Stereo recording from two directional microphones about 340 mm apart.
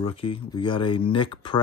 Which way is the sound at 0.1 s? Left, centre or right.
Centre.